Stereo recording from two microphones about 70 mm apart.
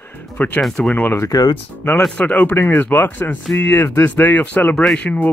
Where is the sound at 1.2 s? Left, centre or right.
Left.